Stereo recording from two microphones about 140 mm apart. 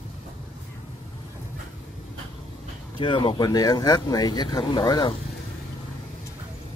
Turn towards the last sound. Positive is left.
turn(degrees=30)  # may be behind; listen again after turning